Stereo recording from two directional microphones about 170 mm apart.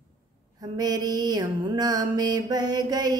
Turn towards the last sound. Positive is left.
turn(degrees=-25)  # may be behind; listen again after turning